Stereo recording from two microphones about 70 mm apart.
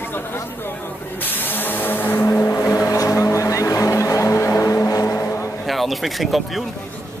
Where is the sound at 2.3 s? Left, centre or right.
Left.